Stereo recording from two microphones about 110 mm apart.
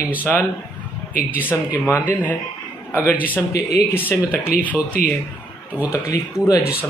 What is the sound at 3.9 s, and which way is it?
Speech, 20° left (ahead or behind).